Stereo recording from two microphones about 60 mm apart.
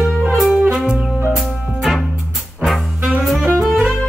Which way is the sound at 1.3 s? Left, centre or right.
Centre.